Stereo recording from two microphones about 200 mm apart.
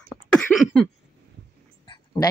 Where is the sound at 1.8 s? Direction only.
25° left (ahead or behind).